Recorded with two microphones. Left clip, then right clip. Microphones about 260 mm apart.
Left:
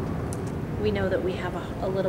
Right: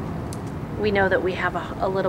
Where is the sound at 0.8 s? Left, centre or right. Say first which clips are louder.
Right 6 dB; centre.